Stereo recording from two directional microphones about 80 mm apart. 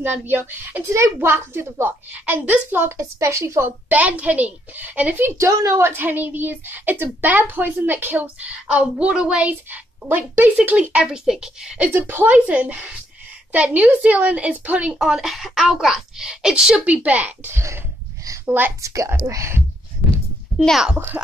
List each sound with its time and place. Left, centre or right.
0.0 s a woman's voice: right
0.8 s a woman's voice: right
1.2 s a woman's voice: right
3.0 s a woman's voice: right
3.9 s a woman's voice: centre
5.5 s a woman's voice: right
5.8 s a woman's voice: right; by 9.5 s centre
9.5 s a woman's voice: right
11.9 s a woman's voice: right
15.0 s a woman's voice: centre; by 18.7 s right
18.8 s a woman's voice: right
20.5 s speech: centre